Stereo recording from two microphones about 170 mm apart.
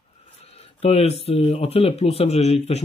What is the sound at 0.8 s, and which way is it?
Speech, 40° left (ahead or behind).